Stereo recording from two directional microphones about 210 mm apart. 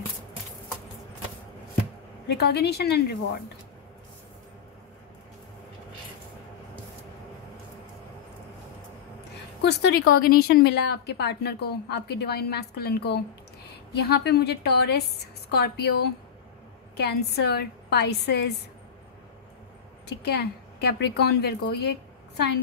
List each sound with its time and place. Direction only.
2.2 s a woman's voice: 50° left (ahead or behind)
9.6 s a woman's voice: 50° left (ahead or behind)
20.1 s a woman's voice: 50° left (ahead or behind)